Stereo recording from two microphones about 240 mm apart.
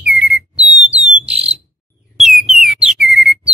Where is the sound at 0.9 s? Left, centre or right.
Centre.